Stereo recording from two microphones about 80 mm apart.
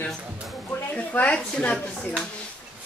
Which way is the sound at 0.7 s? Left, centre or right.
Centre.